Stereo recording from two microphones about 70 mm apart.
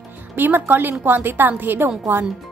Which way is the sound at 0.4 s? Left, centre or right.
Right.